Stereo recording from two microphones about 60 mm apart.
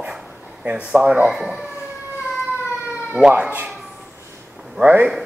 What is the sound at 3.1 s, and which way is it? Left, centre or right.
Speech, centre.